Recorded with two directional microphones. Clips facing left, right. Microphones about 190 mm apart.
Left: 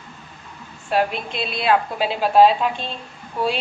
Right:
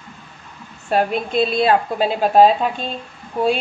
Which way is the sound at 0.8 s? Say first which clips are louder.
Right 3 dB; 45° right (ahead or behind).